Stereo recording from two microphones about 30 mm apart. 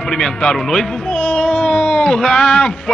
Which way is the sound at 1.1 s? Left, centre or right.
Left.